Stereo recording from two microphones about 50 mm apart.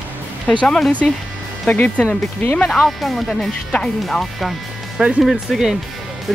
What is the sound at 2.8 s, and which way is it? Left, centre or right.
Speech, centre.